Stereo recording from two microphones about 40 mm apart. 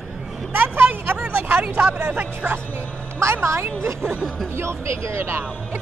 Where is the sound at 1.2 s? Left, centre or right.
Right.